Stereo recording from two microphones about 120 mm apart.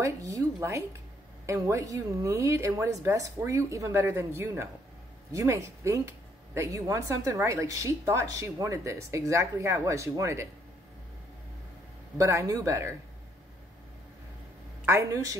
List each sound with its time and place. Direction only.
0.0 s speech: 25° right (ahead or behind)
12.2 s speech: 25° right (ahead or behind)
14.9 s speech: 25° right (ahead or behind)